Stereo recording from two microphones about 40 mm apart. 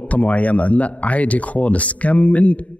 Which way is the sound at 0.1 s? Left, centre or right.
Left.